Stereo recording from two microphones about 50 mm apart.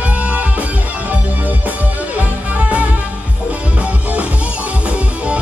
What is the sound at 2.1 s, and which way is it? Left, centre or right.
Music, right.